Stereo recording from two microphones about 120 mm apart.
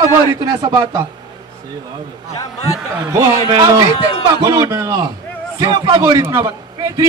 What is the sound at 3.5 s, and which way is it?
A man's voice, 35° right (ahead or behind).